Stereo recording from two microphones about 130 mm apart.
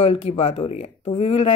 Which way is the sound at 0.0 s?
50° left (ahead or behind).